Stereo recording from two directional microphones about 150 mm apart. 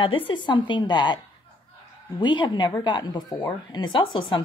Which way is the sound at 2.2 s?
30° left (ahead or behind).